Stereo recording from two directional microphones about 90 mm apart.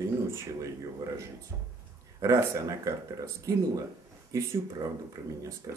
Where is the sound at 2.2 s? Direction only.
35° right (ahead or behind).